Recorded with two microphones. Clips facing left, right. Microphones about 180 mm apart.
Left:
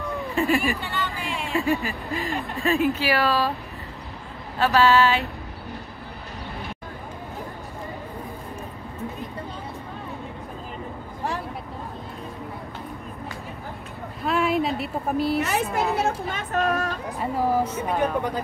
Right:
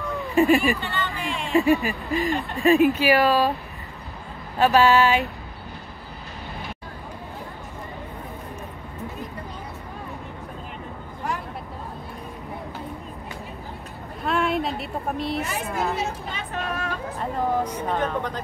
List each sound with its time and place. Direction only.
0.0 s a sound: centre (ahead or behind)
0.3 s speech: 15° right (ahead or behind)
1.1 s a sound: centre (ahead or behind)
1.5 s speech: 15° right (ahead or behind)
4.6 s speech: 15° right (ahead or behind)
14.2 s a sound: centre (ahead or behind)
15.4 s a woman's voice: 70° left (ahead or behind)
16.3 s speech: 45° left (ahead or behind)
17.2 s a woman's voice: 5° left (ahead or behind)